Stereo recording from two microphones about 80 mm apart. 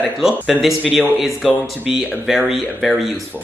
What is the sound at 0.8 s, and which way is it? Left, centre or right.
Speech, centre.